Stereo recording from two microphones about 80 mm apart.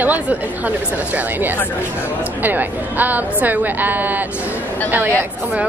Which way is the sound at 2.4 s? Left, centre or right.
Right.